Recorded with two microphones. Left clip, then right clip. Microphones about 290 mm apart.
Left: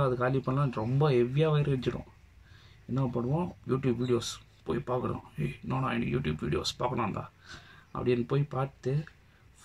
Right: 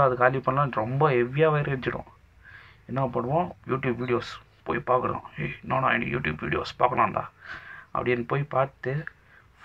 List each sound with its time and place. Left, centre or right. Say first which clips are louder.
0.0 s speech: right 8 dB; centre
6.9 s speech: right 9 dB; right
7.4 s speech: right 10 dB; centre